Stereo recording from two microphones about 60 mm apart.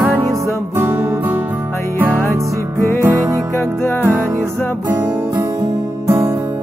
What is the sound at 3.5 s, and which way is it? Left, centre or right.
Music, left.